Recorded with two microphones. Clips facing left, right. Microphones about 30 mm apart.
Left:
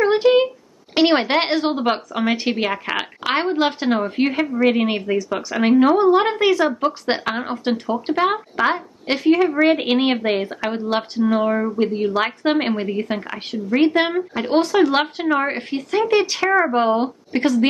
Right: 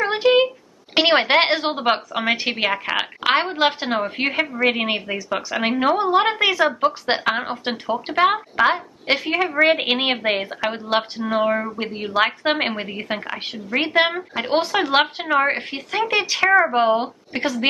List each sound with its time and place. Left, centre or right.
0.0 s a sound: centre
0.9 s a woman's voice: centre
8.2 s a woman's voice: centre